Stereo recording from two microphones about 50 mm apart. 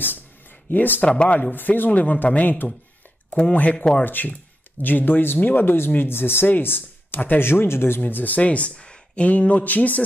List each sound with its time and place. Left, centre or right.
0.7 s speech: left
1.0 s speech: left
1.5 s speech: left
3.3 s speech: centre
4.0 s speech: left
8.0 s speech: left
8.4 s speech: left